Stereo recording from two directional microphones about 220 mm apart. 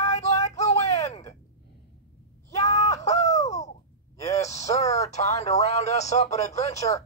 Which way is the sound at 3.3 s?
15° left (ahead or behind).